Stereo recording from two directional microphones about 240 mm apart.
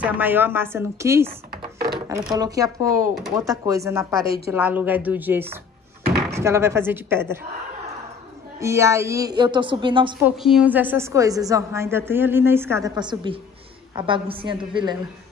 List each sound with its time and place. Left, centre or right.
0.0 s a woman's voice: centre
1.5 s a sound: right
2.3 s a woman's voice: centre
8.5 s a woman's voice: centre
10.2 s a woman's voice: centre